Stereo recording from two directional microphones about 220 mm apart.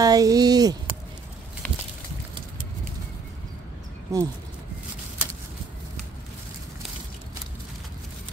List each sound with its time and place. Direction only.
0.0 s speech: 15° right (ahead or behind)
4.1 s speech: 15° right (ahead or behind)